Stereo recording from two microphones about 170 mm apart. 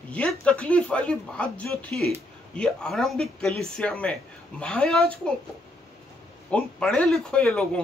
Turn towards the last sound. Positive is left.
turn(degrees=5)  # may be behind; listen again after turning